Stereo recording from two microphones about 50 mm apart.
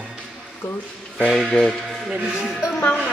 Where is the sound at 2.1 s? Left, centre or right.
Centre.